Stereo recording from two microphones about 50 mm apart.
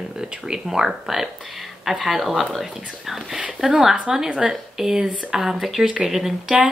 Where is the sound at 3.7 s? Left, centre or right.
Centre.